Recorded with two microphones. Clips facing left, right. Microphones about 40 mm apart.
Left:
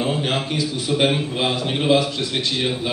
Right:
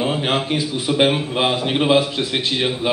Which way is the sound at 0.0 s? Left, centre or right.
Right.